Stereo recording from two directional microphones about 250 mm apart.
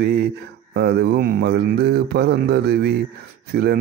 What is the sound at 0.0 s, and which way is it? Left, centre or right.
Speech, right.